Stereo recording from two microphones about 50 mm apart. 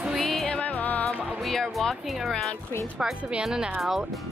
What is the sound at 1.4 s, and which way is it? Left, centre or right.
Speech, centre.